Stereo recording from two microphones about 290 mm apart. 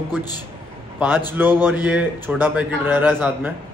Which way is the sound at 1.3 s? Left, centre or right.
Centre.